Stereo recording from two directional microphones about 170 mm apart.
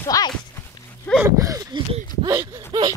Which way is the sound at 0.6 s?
10° left (ahead or behind).